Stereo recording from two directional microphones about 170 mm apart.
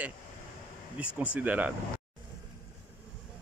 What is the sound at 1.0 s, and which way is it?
Speech, 10° right (ahead or behind).